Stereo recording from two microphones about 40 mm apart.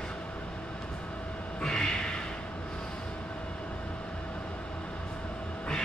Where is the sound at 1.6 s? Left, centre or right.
Left.